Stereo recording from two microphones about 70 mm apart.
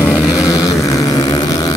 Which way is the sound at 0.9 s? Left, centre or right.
Left.